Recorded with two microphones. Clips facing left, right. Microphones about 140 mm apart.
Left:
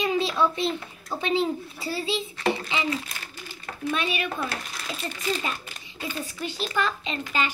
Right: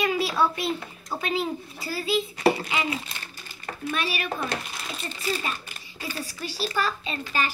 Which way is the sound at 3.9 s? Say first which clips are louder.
Even; 25° left (ahead or behind).